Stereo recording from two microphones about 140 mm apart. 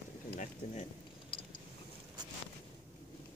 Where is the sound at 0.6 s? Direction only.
50° left (ahead or behind).